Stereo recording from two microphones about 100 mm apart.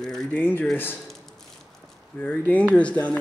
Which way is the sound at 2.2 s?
15° left (ahead or behind).